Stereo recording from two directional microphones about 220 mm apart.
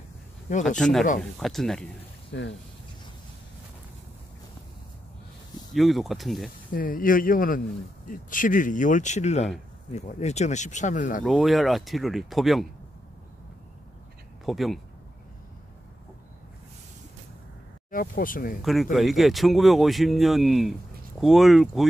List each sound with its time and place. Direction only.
0.7 s speech: centre (ahead or behind)
2.3 s speech: 50° left (ahead or behind)
5.8 s speech: centre (ahead or behind)
6.7 s speech: 40° left (ahead or behind)
11.2 s speech: centre (ahead or behind)
14.4 s speech: centre (ahead or behind)
17.9 s speech: 40° left (ahead or behind)
18.6 s speech: centre (ahead or behind)